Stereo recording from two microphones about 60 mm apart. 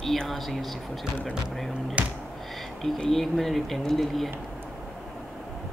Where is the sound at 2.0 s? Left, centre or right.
Right.